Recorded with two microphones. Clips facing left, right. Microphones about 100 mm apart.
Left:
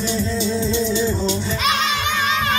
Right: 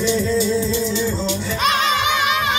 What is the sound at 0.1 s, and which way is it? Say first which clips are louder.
Music: right 3 dB; 25° left (ahead or behind).